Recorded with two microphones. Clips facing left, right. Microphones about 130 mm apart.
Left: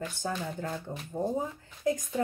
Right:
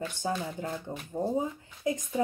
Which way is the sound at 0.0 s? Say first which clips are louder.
Right 2 dB; 20° right (ahead or behind).